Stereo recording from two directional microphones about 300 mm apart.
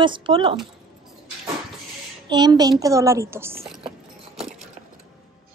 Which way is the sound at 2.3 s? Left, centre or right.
Centre.